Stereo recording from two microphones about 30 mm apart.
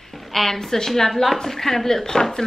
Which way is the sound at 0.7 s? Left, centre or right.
Centre.